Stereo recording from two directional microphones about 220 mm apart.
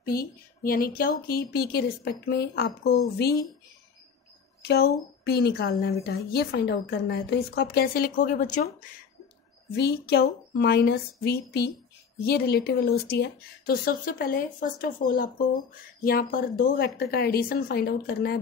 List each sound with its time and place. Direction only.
0.0 s speech: 40° left (ahead or behind)
4.6 s speech: 45° left (ahead or behind)
9.8 s speech: 45° left (ahead or behind)